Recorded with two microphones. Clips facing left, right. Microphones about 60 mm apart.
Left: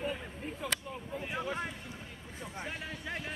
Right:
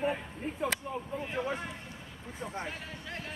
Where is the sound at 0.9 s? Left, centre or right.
Right.